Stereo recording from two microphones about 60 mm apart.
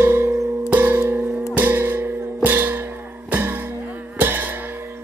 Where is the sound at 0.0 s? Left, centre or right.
Right.